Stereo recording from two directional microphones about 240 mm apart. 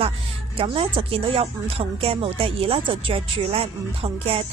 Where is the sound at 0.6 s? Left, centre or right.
Right.